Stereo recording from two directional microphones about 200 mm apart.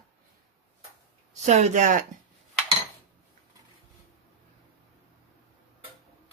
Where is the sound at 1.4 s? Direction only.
35° right (ahead or behind).